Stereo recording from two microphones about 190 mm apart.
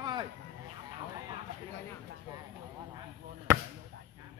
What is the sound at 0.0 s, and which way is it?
Vehicle, 25° right (ahead or behind).